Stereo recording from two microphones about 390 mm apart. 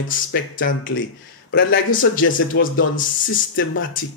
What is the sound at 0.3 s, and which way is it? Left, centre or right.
Speech, left.